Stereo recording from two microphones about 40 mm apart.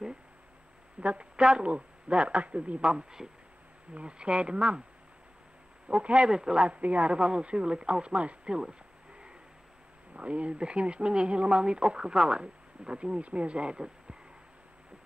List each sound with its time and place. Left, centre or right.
1.0 s a woman's voice: right
5.9 s speech: right
6.8 s speech: right
8.5 s a sound: right
10.1 s speech: right